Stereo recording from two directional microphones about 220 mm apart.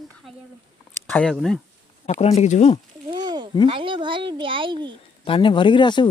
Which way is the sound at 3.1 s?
20° right (ahead or behind).